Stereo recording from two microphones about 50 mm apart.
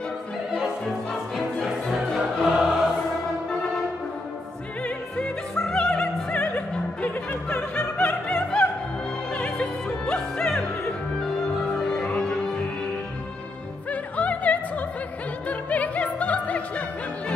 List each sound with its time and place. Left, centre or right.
1.3 s music: centre
5.5 s opera: centre
12.2 s music: centre
13.8 s opera: left